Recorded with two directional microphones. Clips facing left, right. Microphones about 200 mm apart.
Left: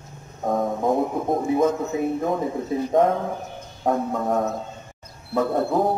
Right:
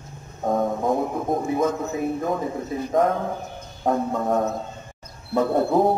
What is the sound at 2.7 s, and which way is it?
Speech, 25° left (ahead or behind).